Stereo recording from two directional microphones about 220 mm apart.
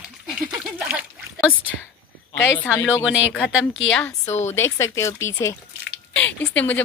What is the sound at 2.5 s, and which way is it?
Speech, 10° left (ahead or behind).